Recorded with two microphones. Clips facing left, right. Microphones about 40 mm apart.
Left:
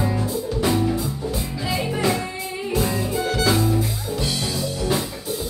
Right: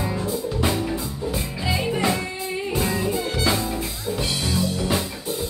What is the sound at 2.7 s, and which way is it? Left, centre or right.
Music, right.